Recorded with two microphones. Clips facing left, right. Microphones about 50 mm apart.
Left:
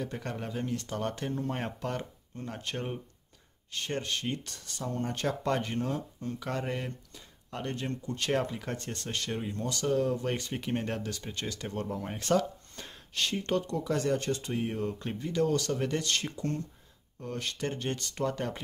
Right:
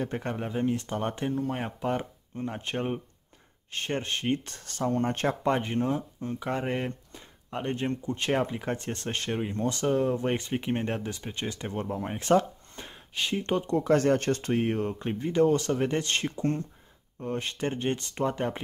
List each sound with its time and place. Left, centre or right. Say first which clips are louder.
0.0 s speech: right 5 dB; right
1.3 s speech: right 3 dB; centre
1.9 s speech: right 6 dB; centre; by 5.4 s right
5.4 s speech: right 4 dB; right
13.7 s speech: right 6 dB; right
14.9 s speech: right 4 dB; right